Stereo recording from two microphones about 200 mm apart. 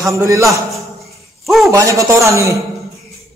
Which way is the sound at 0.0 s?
15° right (ahead or behind).